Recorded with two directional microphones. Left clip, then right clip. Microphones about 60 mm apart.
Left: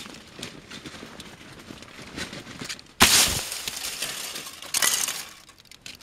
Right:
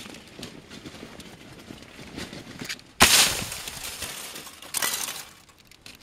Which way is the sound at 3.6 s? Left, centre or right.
Left.